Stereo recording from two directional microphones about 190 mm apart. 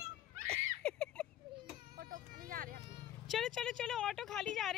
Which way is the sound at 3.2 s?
Centre (ahead or behind).